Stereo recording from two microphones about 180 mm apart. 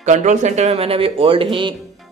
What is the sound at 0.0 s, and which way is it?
Speech, 40° right (ahead or behind).